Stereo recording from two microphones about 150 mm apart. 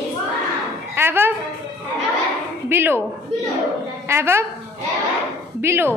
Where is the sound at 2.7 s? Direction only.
15° right (ahead or behind).